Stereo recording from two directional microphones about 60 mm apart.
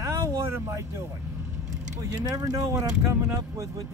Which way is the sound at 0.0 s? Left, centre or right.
Right.